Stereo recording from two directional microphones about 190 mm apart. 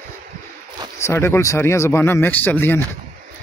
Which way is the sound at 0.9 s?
15° left (ahead or behind).